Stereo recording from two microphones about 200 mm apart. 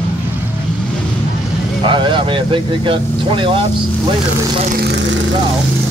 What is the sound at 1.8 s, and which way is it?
Speech, 25° right (ahead or behind).